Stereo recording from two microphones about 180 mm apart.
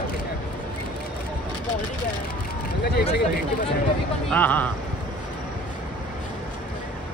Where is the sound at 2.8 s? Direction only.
65° left (ahead or behind).